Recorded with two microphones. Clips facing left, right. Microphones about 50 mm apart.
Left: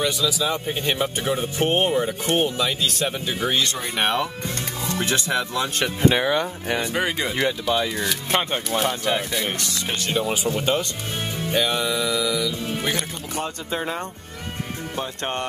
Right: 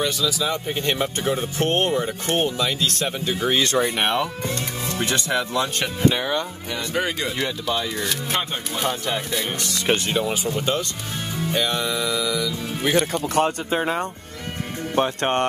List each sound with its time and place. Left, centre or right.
0.0 s speech: centre
4.0 s speech: centre
6.0 s speech: centre
11.5 s speech: centre
13.7 s speech: centre
15.0 s speech: right